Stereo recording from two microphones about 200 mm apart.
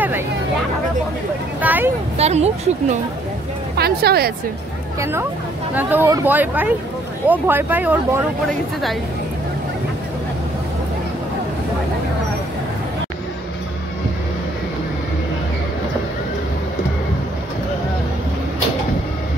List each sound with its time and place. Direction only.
1.6 s speech: 10° right (ahead or behind)
2.1 s speech: 30° right (ahead or behind)
3.7 s speech: 50° right (ahead or behind)
5.8 s speech: 10° right (ahead or behind)